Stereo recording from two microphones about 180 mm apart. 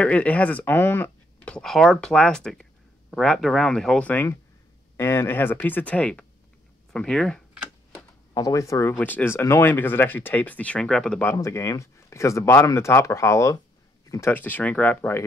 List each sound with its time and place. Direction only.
0.0 s speech: 10° left (ahead or behind)
6.9 s a sound: 5° left (ahead or behind)
8.4 s speech: 20° left (ahead or behind)
11.3 s speech: 15° left (ahead or behind)